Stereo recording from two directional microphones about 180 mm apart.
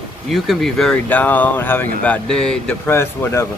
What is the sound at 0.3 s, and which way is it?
Speech, centre (ahead or behind).